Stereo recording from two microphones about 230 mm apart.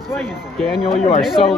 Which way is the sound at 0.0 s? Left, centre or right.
Centre.